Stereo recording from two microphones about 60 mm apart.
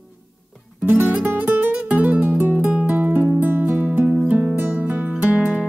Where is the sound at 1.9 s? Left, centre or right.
Right.